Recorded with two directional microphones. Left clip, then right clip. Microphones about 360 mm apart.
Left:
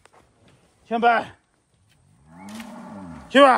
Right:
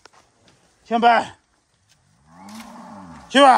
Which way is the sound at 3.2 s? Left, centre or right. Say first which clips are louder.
Right 1 dB; centre.